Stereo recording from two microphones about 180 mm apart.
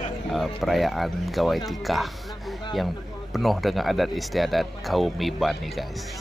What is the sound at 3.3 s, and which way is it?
Speech, centre (ahead or behind).